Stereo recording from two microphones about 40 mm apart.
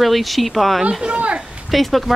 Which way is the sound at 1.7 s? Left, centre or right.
Centre.